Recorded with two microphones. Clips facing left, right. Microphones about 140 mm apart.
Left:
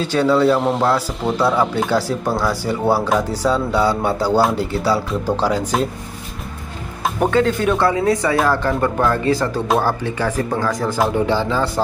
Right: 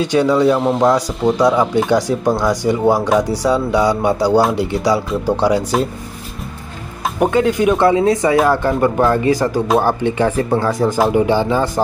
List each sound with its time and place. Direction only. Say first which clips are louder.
0.0 s speech: right 2 dB; 15° right (ahead or behind)
0.6 s speech: right 3 dB; centre (ahead or behind)
1.9 s speech: right 4 dB; 15° right (ahead or behind)
7.2 s speech: right 3 dB; 15° right (ahead or behind)